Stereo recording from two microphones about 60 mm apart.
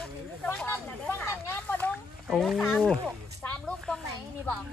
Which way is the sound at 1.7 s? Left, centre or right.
Left.